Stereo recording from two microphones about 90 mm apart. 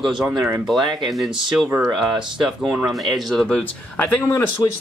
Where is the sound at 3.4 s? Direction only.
15° left (ahead or behind).